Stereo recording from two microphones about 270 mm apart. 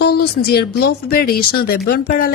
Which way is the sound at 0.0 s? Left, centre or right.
Left.